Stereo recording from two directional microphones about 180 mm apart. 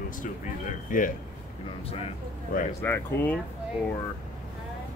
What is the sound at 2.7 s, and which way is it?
Speech, 10° left (ahead or behind).